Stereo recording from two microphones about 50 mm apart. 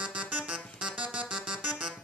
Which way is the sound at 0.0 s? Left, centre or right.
Right.